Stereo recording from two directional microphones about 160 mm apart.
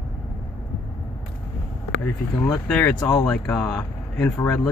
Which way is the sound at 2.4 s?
5° left (ahead or behind).